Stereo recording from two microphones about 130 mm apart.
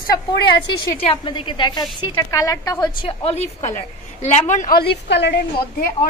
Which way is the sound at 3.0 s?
50° left (ahead or behind).